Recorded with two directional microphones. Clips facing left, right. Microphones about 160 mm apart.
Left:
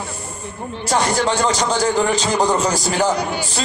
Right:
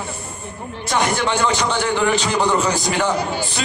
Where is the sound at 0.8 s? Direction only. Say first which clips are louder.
Left 2 dB; 35° left (ahead or behind).